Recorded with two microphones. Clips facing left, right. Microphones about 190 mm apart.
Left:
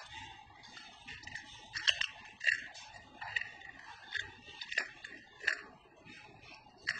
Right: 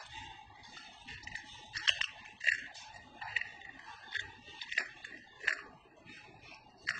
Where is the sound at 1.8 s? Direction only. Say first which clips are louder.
Left 1 dB; 35° left (ahead or behind).